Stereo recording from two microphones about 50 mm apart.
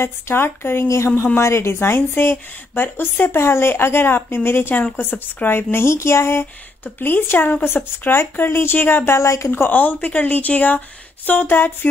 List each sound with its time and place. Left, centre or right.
0.0 s a woman's voice: left
0.8 s a woman's voice: left
1.7 s a woman's voice: left
4.9 s speech: left
5.9 s speech: left
6.8 s a woman's voice: left
9.1 s a woman's voice: left
9.7 s speech: left